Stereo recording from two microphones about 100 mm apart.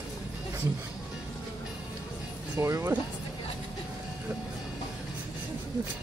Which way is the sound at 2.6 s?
30° right (ahead or behind).